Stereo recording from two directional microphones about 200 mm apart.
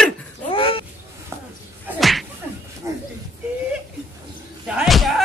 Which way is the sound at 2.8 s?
15° right (ahead or behind).